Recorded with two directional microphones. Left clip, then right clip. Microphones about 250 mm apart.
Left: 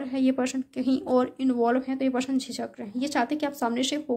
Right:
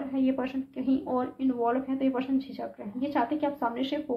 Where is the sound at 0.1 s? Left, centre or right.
Left.